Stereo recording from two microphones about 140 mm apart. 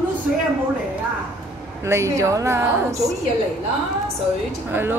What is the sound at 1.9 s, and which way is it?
A woman's voice, 20° right (ahead or behind).